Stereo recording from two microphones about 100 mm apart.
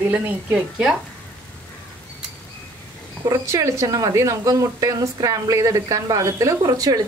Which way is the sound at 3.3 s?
35° right (ahead or behind).